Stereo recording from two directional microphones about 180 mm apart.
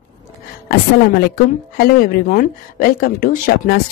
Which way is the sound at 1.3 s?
55° left (ahead or behind).